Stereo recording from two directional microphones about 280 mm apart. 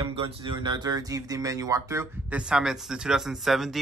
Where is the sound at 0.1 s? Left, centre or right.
Centre.